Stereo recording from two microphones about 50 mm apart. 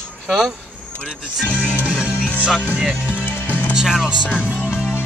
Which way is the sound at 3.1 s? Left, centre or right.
Left.